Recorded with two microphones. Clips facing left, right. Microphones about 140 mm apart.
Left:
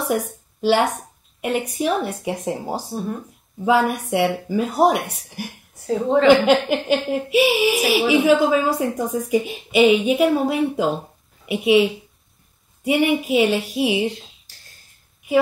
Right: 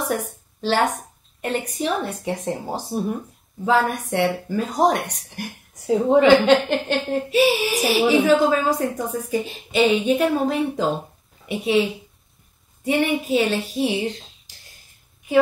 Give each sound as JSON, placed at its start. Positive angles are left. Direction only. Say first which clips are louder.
{"t": 0.0, "sound": "a woman's voice", "louder": "left 2 dB", "side_deg": 10}
{"t": 6.2, "sound": "a woman's voice", "louder": "left 3 dB", "side_deg": 10}